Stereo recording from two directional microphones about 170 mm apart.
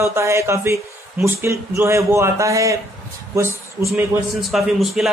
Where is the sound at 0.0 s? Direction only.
15° right (ahead or behind).